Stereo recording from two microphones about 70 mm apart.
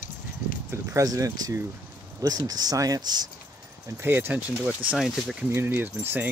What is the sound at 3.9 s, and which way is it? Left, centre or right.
Speech, right.